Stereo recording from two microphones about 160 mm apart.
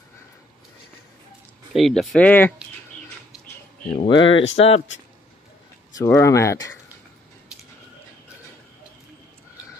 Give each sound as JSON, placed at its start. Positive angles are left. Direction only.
{"t": 1.7, "sound": "speech", "side_deg": 0}
{"t": 4.0, "sound": "speech", "side_deg": 35}
{"t": 5.9, "sound": "speech", "side_deg": 20}